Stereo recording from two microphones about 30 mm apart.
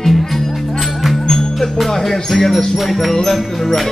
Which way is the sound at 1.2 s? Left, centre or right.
Centre.